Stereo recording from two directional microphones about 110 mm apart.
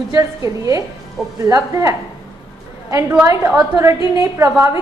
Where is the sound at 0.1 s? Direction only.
30° right (ahead or behind).